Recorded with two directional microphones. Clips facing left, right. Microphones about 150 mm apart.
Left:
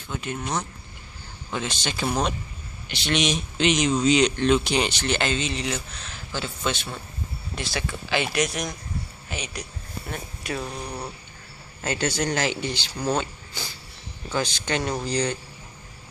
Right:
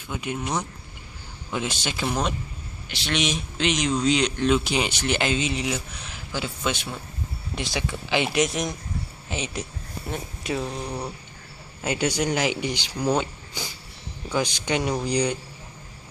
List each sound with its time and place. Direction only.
0.1 s a man's voice: 10° right (ahead or behind)